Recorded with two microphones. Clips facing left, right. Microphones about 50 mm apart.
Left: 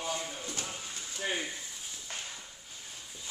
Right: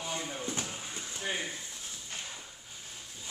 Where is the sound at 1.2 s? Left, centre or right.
Centre.